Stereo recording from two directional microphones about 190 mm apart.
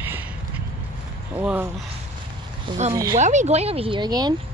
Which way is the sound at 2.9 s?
15° right (ahead or behind).